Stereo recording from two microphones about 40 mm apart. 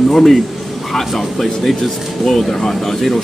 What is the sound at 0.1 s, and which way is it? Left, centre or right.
Speech, centre.